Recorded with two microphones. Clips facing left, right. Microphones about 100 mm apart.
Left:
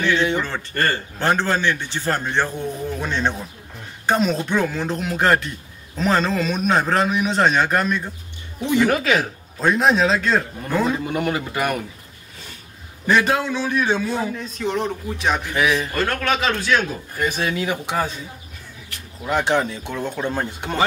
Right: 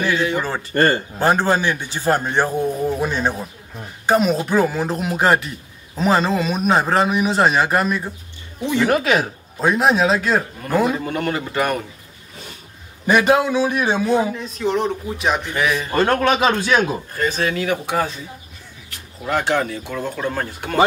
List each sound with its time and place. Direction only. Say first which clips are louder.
0.4 s speech: right 2 dB; 10° right (ahead or behind)
0.7 s speech: right 6 dB; 25° right (ahead or behind)
1.2 s a man's voice: right 2 dB; 10° right (ahead or behind)
11.1 s speech: even; 10° left (ahead or behind)
13.0 s speech: right 3 dB; 15° right (ahead or behind)
14.3 s a man's voice: right 3 dB; centre (ahead or behind)
15.9 s speech: right 5 dB; 25° right (ahead or behind)
17.1 s speech: right 2 dB; 15° left (ahead or behind)
19.2 s speech: even; 15° left (ahead or behind)